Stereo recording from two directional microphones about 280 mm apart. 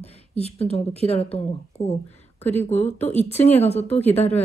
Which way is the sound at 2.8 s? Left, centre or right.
Left.